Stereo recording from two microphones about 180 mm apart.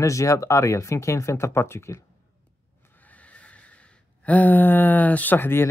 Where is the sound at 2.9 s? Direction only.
10° left (ahead or behind).